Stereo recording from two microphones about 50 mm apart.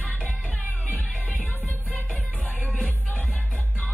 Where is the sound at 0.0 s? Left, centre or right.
Left.